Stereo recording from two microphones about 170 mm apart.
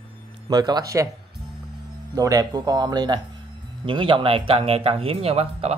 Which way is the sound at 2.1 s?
20° right (ahead or behind).